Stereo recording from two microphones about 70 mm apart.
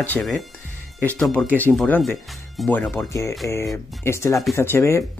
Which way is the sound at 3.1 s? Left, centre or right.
Left.